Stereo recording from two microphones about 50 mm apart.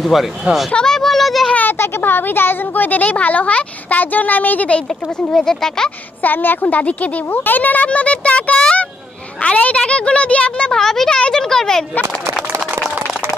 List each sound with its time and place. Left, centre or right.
0.0 s speech: centre
0.8 s a sound: centre
1.7 s speech: left
5.3 s speech: centre
6.2 s speech: left
10.7 s speech: centre